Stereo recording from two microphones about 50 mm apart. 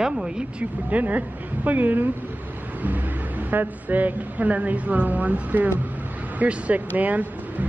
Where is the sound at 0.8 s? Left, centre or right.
Right.